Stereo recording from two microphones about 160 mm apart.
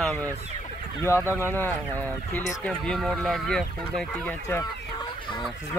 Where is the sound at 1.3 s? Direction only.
15° right (ahead or behind).